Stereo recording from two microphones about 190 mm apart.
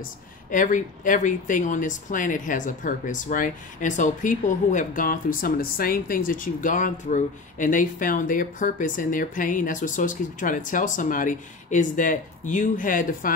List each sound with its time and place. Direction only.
0.5 s speech: 45° left (ahead or behind)